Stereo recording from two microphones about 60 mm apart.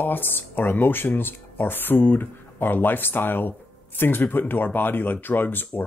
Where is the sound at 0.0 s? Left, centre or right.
Left.